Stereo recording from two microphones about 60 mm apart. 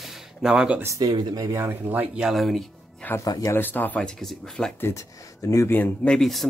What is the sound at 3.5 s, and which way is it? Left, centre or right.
Speech, left.